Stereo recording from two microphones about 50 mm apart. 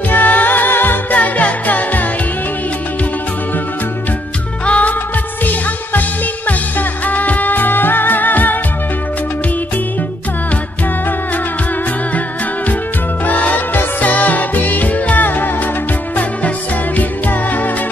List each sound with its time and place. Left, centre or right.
0.1 s music: left
4.6 s music: left
13.3 s music: left